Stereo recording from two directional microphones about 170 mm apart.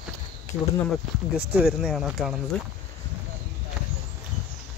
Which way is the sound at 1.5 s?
Centre (ahead or behind).